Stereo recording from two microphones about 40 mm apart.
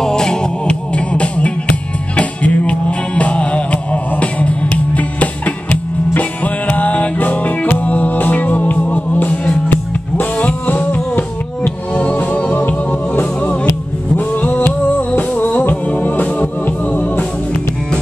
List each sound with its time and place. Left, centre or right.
0.0 s music: centre
0.7 s music: left
10.7 s music: left